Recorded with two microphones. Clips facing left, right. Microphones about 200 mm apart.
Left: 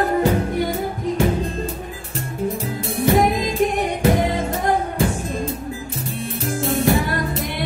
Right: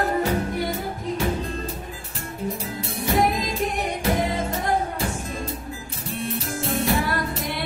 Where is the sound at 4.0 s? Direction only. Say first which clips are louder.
Left 5 dB; 50° left (ahead or behind).